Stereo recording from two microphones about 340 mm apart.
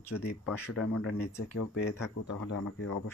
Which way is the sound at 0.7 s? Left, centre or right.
Left.